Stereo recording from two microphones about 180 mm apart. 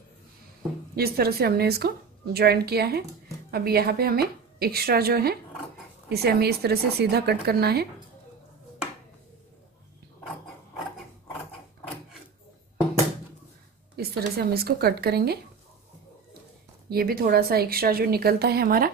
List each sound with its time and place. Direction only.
0.9 s a woman's voice: 60° right (ahead or behind)
13.9 s a woman's voice: 60° right (ahead or behind)
16.9 s a woman's voice: 55° right (ahead or behind)